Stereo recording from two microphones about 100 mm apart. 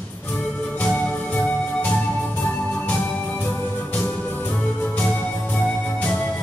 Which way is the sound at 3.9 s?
20° left (ahead or behind).